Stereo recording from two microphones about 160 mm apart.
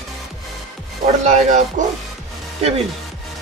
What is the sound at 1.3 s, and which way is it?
Speech, 50° right (ahead or behind).